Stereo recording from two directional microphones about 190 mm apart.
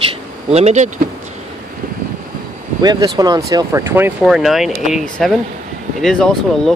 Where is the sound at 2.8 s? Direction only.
20° right (ahead or behind).